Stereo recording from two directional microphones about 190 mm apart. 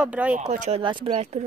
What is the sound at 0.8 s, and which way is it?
Speech, 25° right (ahead or behind).